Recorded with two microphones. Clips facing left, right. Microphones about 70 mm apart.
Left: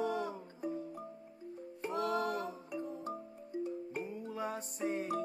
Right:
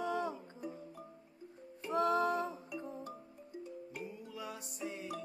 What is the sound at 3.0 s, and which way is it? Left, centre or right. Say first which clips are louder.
Music: left 6 dB; left.